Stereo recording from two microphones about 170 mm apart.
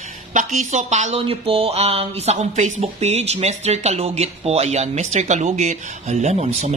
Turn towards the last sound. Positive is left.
turn(degrees=-40)  # may be behind; listen again after turning